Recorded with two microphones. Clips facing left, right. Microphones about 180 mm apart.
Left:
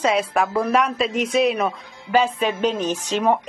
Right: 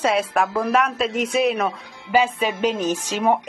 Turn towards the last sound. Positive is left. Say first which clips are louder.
# even
turn(degrees=-5)  # may be behind; listen again after turning